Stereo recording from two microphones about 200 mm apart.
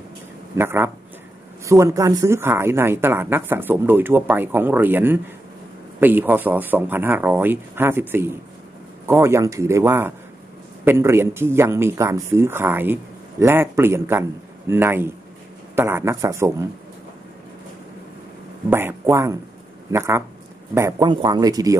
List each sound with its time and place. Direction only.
0.6 s speech: 10° right (ahead or behind)
18.7 s speech: 10° right (ahead or behind)